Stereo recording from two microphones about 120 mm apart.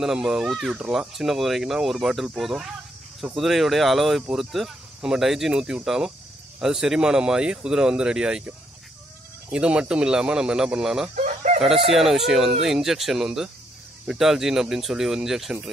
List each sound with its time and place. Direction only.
0.0 s speech: 5° right (ahead or behind)
11.1 s chicken: 90° right
11.9 s speech: centre (ahead or behind)